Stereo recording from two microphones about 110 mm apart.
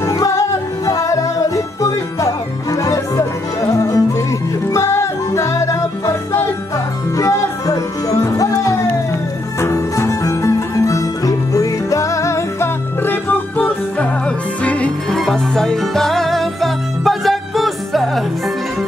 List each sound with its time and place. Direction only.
0.0 s music: 30° left (ahead or behind); by 18.2 s centre (ahead or behind)